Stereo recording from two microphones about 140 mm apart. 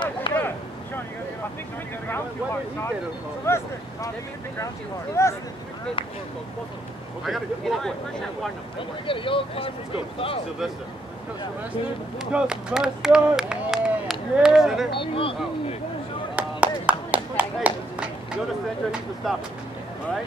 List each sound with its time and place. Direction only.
0.3 s a sound: 35° left (ahead or behind)
3.4 s speech: 20° left (ahead or behind)
5.2 s speech: 20° left (ahead or behind)
7.2 s speech: centre (ahead or behind)
8.7 s speech: 40° left (ahead or behind)
12.3 s speech: 5° right (ahead or behind)
14.9 s speech: 40° left (ahead or behind)
16.3 s a sound: 10° right (ahead or behind)
19.2 s speech: centre (ahead or behind)